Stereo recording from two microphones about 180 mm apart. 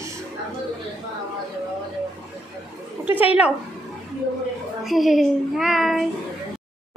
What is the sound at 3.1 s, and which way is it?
Speech, 10° right (ahead or behind).